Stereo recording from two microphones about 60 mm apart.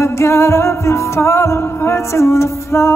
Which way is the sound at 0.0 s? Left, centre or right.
Left.